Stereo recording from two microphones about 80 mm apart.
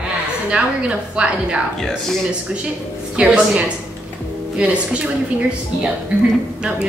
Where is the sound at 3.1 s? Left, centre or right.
Centre.